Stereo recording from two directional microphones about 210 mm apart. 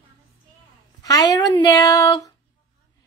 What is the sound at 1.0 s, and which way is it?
Speech, 15° left (ahead or behind).